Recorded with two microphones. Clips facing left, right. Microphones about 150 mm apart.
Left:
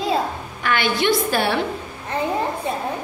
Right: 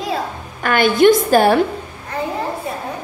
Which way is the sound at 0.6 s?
45° right (ahead or behind).